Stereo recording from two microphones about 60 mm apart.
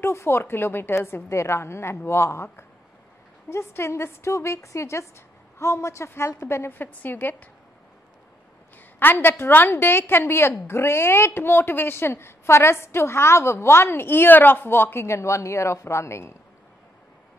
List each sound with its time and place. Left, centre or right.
0.0 s a woman's voice: left
6.7 s a woman's voice: left
9.0 s a woman's voice: left